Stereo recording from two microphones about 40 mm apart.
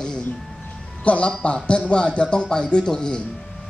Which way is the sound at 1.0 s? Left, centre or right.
Left.